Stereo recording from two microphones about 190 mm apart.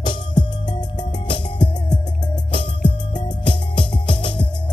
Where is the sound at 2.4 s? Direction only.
25° left (ahead or behind).